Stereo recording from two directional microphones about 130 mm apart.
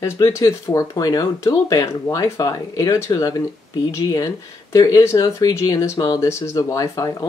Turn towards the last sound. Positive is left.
turn(degrees=25)  # may be behind; listen again after turning